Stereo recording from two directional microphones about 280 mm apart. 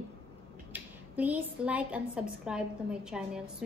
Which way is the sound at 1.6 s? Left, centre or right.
Centre.